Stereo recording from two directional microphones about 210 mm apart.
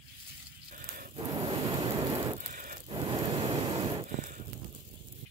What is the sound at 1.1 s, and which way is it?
Rain, 25° right (ahead or behind).